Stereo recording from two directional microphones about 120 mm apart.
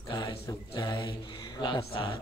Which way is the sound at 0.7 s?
40° left (ahead or behind).